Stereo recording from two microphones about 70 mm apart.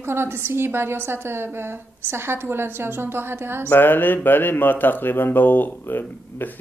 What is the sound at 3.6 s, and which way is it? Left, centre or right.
Speech, left.